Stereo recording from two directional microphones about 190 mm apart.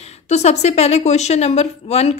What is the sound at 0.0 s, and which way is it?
Speech, 35° left (ahead or behind).